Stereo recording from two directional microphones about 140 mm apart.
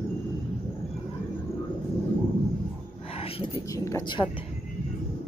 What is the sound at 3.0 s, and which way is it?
Whispering, 45° left (ahead or behind).